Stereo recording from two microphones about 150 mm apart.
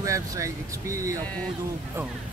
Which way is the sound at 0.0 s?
20° right (ahead or behind).